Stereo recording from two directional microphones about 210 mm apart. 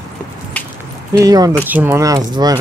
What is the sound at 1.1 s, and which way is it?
Speech, 15° right (ahead or behind).